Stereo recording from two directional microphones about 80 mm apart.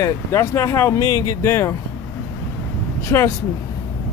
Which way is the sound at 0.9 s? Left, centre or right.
Left.